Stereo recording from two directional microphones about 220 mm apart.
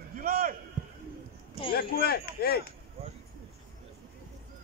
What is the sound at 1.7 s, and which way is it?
Speech, 45° left (ahead or behind).